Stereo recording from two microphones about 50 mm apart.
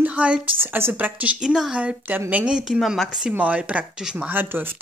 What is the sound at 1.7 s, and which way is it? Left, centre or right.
Speech, right.